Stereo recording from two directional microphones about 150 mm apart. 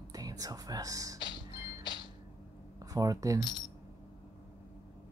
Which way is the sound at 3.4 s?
30° left (ahead or behind).